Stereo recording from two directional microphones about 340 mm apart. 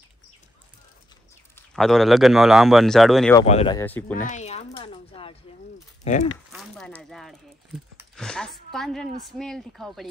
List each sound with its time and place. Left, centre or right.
1.5 s a man's voice: centre
3.4 s speech: centre
4.2 s a sound: left
6.0 s speech: centre
6.5 s speech: centre